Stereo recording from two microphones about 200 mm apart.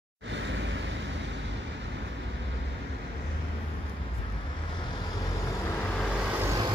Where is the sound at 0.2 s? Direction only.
65° right (ahead or behind).